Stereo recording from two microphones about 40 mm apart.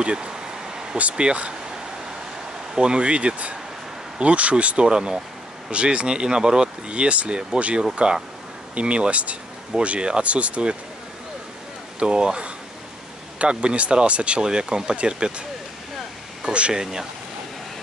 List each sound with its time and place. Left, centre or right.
0.0 s a sound: right
1.1 s speech: right
2.7 s speech: right
4.8 s speech: centre
5.7 s speech: right
12.0 s speech: right
14.4 s speech: centre
16.4 s speech: right